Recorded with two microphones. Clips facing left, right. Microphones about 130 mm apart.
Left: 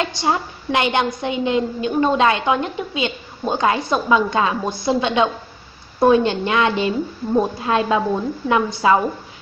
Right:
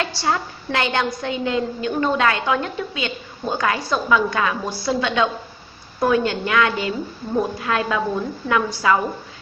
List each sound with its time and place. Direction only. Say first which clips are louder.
0.0 s a woman's voice: left 2 dB; 20° left (ahead or behind)